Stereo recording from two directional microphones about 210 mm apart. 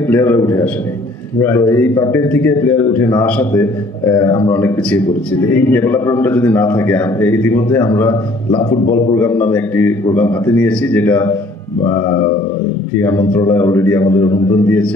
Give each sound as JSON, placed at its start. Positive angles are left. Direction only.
{"t": 0.1, "sound": "a man's voice", "side_deg": 10}
{"t": 8.5, "sound": "a man's voice", "side_deg": 25}
{"t": 8.9, "sound": "a man's voice", "side_deg": 10}